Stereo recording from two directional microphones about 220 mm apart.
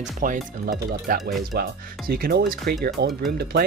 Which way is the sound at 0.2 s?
40° right (ahead or behind).